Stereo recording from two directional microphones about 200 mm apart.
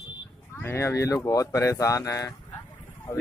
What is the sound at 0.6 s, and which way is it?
Speech, 15° left (ahead or behind).